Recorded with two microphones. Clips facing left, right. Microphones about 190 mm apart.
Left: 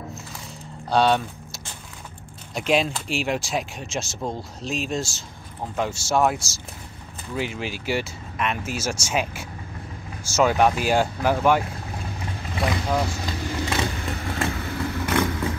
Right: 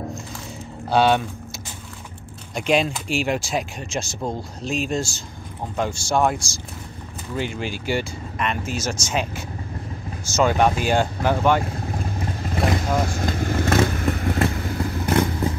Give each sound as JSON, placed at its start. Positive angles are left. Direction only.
{"t": 0.8, "sound": "speech", "side_deg": -5}
{"t": 2.5, "sound": "speech", "side_deg": 0}
{"t": 13.1, "sound": "vehicle", "side_deg": -50}